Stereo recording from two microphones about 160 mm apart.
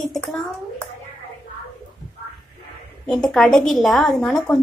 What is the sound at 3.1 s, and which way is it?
A woman's voice, 5° left (ahead or behind).